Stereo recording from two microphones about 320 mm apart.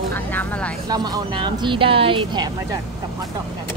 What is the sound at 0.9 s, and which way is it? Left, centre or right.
A woman's voice, centre.